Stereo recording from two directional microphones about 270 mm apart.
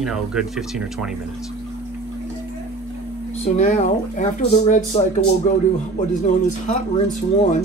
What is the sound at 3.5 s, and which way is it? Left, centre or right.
Speech, left.